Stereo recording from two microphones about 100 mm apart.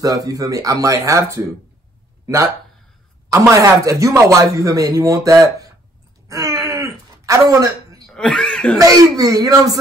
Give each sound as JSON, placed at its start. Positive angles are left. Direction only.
{"t": 0.0, "sound": "a man's voice", "side_deg": -35}
{"t": 6.2, "sound": "a sound", "side_deg": -35}
{"t": 8.1, "sound": "speech", "side_deg": 10}
{"t": 8.7, "sound": "a man's voice", "side_deg": -35}